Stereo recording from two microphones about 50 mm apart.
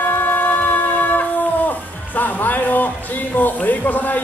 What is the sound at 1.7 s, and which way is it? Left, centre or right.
Speech, left.